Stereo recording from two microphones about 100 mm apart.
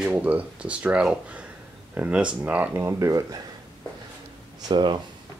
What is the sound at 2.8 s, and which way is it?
Speech, 30° right (ahead or behind).